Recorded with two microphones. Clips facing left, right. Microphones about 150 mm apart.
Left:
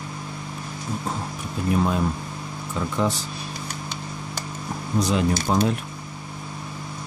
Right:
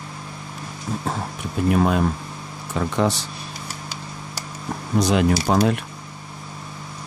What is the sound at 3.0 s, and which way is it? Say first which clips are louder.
Speech: right 3 dB; 75° right (ahead or behind).